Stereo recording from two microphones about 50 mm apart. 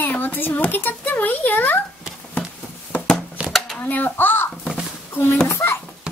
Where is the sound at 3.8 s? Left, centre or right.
Left.